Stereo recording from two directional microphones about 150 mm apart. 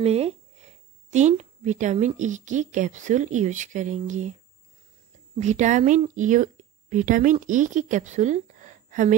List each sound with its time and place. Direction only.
0.0 s a woman's voice: 45° right (ahead or behind)
5.4 s a woman's voice: 50° right (ahead or behind)